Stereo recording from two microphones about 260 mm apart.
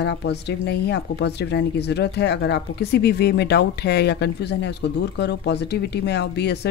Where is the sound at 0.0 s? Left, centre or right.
Left.